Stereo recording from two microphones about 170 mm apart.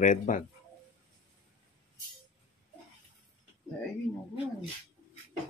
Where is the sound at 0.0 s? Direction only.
50° left (ahead or behind).